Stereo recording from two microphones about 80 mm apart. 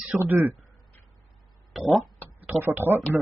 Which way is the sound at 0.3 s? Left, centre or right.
Centre.